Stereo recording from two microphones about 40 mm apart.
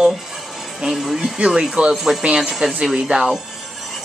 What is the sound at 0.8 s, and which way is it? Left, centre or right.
Speech, centre.